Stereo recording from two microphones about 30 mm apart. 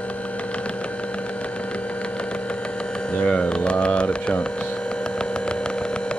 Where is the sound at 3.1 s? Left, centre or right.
Left.